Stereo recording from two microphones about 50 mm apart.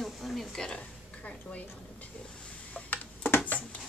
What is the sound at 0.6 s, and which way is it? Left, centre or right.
Speech, centre.